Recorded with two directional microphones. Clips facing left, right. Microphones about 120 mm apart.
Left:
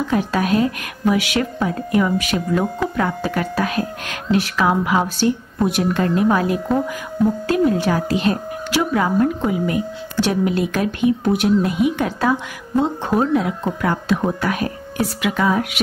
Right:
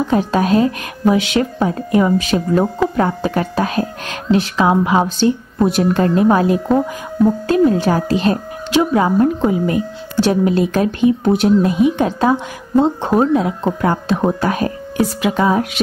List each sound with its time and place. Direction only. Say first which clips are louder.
0.1 s a woman's voice: right 4 dB; 30° right (ahead or behind)